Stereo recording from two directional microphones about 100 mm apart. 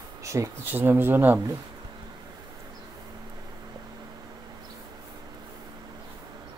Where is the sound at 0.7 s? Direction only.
20° right (ahead or behind).